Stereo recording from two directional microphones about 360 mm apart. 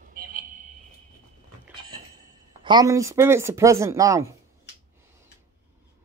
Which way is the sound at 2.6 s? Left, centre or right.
Centre.